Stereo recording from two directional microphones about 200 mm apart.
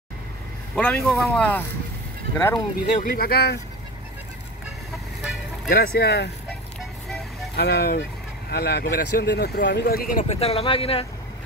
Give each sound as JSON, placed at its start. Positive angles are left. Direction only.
{"t": 0.7, "sound": "speech", "side_deg": 5}
{"t": 3.0, "sound": "speech", "side_deg": 45}
{"t": 5.7, "sound": "speech", "side_deg": 55}
{"t": 7.5, "sound": "speech", "side_deg": 50}